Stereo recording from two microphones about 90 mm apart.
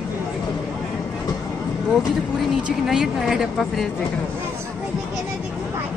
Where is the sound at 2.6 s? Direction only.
5° right (ahead or behind).